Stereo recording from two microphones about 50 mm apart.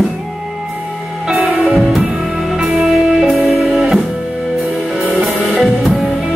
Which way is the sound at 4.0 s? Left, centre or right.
Centre.